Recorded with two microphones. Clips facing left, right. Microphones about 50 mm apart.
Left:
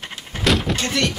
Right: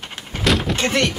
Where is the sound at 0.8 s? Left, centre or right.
Right.